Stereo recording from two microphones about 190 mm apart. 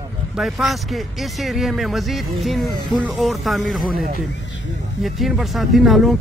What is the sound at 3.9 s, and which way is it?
Speech, 45° right (ahead or behind).